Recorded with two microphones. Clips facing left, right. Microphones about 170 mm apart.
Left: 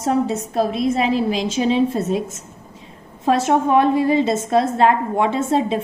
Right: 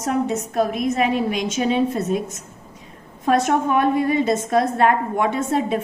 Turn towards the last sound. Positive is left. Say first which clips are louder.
# left 2 dB
turn(degrees=25)  # may be behind; listen again after turning